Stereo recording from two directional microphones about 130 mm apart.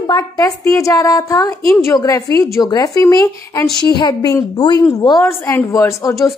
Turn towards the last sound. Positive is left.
turn(degrees=25)  # may be behind; listen again after turning